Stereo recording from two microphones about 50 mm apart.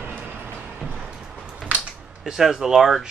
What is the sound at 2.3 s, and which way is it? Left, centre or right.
Speech, centre.